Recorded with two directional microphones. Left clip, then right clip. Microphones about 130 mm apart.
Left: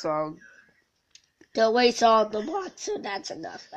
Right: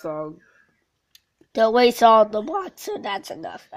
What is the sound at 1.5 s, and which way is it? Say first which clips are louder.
Speech: right 4 dB; 60° right (ahead or behind).